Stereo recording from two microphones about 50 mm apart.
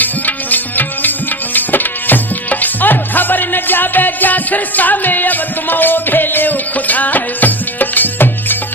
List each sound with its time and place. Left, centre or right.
0.0 s music: left